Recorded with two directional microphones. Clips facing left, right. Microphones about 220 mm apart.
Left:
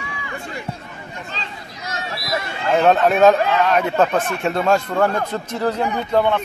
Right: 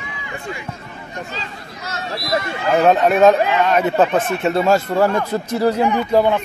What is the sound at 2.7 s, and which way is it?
Speech, centre (ahead or behind).